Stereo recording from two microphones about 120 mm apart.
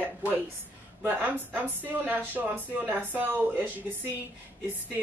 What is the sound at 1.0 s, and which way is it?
Speech, 15° right (ahead or behind).